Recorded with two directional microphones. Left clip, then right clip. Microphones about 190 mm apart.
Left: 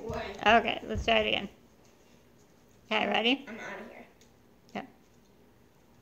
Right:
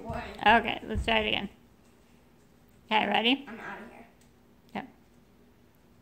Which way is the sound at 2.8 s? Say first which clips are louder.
Right 2 dB; 20° right (ahead or behind).